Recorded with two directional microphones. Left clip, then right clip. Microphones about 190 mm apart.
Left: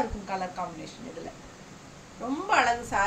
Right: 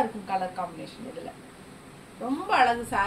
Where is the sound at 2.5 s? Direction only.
25° left (ahead or behind).